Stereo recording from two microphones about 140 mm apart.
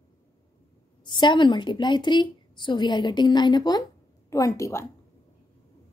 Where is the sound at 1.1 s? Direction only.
35° left (ahead or behind).